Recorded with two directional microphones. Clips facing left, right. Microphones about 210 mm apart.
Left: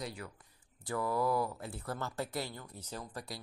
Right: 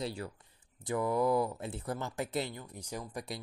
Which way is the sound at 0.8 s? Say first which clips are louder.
Right 3 dB; 20° right (ahead or behind).